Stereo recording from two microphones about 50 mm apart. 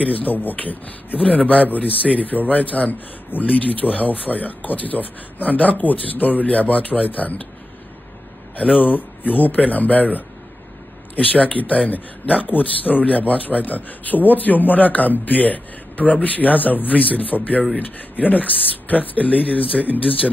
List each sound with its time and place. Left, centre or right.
0.0 s speech: left
8.5 s speech: left